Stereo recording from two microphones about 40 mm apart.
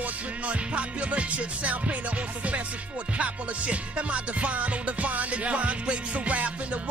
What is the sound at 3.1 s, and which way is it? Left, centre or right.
Music, right.